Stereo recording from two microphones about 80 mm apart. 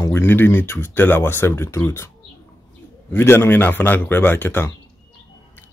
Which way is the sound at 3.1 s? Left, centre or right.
Left.